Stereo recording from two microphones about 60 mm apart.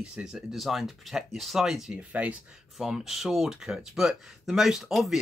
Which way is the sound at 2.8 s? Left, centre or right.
Centre.